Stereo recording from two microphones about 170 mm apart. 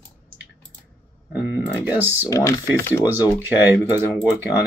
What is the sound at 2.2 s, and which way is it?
Speech, 15° left (ahead or behind).